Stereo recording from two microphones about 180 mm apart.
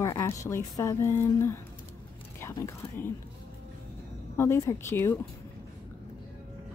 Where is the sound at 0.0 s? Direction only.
15° left (ahead or behind).